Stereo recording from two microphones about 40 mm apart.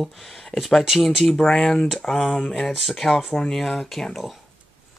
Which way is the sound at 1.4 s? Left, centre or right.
Centre.